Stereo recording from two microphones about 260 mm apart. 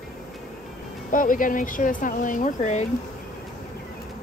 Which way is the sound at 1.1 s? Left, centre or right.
Left.